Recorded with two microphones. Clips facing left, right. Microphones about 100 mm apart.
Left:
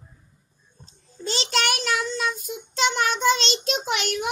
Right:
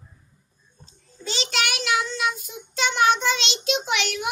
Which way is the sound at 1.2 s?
40° left (ahead or behind).